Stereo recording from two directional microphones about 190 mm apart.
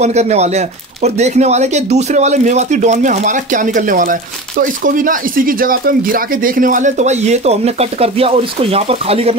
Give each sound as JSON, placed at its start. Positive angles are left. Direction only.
{"t": 0.0, "sound": "speech", "side_deg": -35}